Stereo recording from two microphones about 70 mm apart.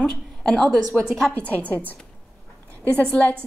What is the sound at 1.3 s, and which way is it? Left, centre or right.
Speech, left.